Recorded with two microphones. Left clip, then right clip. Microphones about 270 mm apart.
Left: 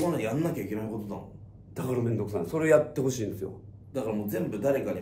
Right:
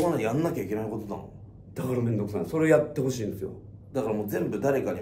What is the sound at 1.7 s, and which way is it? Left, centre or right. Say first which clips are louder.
A man's voice: right 1 dB; centre.